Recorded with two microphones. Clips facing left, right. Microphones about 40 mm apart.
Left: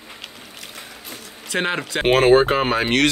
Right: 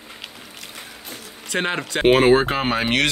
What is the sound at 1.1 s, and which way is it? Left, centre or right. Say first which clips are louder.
Speech: left 1 dB; centre.